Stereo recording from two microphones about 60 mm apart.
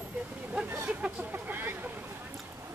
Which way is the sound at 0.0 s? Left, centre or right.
Right.